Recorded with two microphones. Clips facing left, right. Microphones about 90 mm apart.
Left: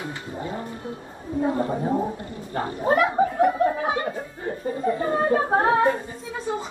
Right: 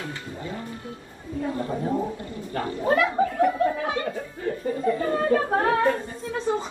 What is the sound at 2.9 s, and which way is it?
Speech, 35° left (ahead or behind).